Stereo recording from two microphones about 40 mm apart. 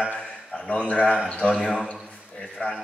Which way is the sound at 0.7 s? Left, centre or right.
Left.